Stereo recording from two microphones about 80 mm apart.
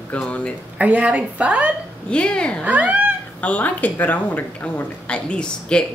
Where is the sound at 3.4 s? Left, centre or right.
Centre.